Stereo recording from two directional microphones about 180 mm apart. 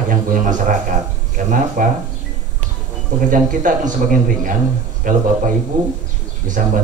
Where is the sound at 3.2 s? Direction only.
45° right (ahead or behind).